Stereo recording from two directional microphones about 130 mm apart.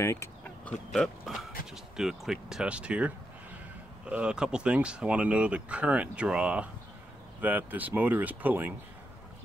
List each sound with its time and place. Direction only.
0.0 s speech: 20° left (ahead or behind)
0.7 s speech: 5° left (ahead or behind); by 8.7 s 15° right (ahead or behind)